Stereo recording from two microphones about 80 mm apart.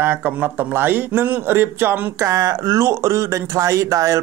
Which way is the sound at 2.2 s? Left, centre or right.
Right.